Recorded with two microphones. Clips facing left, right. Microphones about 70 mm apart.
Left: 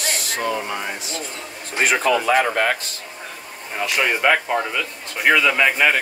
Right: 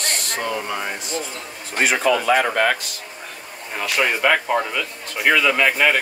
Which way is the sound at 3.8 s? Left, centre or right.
Centre.